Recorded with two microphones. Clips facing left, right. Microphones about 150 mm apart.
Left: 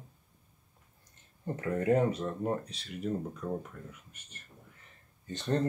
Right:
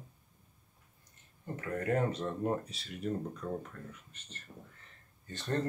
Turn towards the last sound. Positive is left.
turn(degrees=20)  # may be behind; listen again after turning